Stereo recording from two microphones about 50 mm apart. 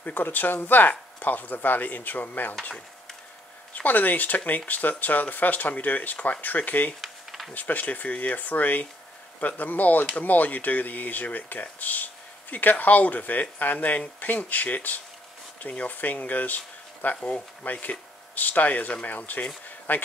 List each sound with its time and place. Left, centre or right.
0.0 s speech: left
3.7 s speech: left
7.0 s a sound: centre
7.5 s speech: left